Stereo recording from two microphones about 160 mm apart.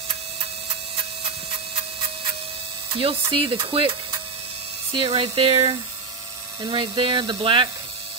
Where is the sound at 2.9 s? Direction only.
35° right (ahead or behind).